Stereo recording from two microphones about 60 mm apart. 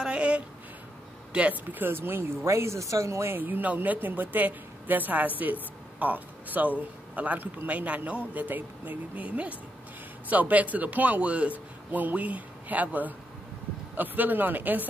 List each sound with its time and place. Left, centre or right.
0.0 s a sound: centre
1.3 s speech: right
3.3 s speech: right